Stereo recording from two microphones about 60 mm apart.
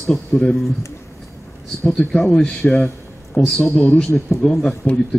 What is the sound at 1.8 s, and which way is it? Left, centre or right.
Speech, centre.